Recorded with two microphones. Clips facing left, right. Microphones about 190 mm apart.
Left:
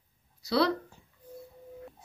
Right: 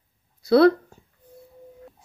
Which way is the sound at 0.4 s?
55° right (ahead or behind).